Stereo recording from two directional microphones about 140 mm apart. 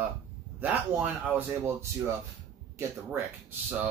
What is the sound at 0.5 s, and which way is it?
Speech, 10° right (ahead or behind).